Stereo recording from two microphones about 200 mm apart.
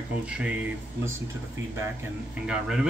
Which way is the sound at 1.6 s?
65° right (ahead or behind).